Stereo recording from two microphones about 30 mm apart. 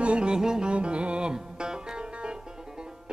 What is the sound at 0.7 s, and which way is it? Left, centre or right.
Music, right.